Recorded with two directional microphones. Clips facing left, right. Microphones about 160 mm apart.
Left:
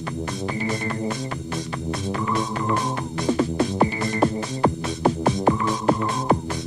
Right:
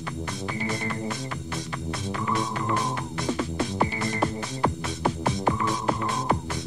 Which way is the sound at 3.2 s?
40° left (ahead or behind).